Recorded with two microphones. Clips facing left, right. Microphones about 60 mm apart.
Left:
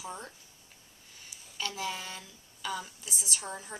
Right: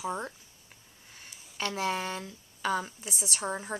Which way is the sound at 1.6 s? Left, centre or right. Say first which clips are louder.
Right 5 dB; right.